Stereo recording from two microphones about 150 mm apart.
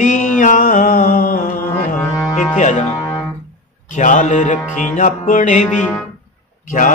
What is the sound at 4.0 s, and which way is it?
Music, 55° left (ahead or behind).